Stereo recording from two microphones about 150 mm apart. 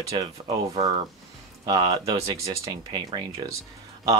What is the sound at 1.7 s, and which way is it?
Speech, 25° right (ahead or behind).